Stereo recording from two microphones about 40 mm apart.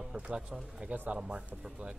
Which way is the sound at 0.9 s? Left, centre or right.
Right.